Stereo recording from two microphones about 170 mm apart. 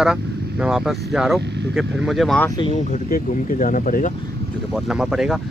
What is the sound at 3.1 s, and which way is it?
Speech, 50° left (ahead or behind).